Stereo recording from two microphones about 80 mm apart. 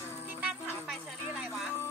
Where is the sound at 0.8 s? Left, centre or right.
Centre.